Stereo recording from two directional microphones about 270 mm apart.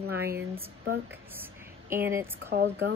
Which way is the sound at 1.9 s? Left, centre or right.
Centre.